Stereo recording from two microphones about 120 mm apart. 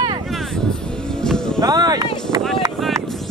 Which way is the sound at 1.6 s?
30° right (ahead or behind).